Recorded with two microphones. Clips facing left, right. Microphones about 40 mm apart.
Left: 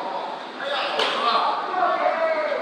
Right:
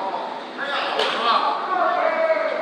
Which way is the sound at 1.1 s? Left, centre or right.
Right.